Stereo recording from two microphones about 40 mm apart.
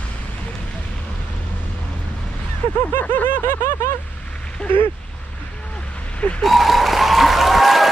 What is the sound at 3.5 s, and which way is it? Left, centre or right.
Vehicle, left.